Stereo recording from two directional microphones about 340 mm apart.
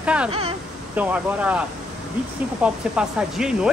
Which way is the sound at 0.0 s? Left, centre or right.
Centre.